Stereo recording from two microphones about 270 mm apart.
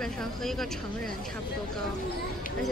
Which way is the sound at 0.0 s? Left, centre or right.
Centre.